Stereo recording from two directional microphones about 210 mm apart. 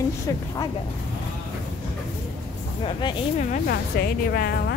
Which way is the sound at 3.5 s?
50° left (ahead or behind).